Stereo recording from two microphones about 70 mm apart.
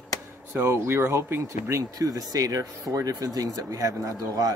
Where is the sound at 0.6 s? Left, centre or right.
Right.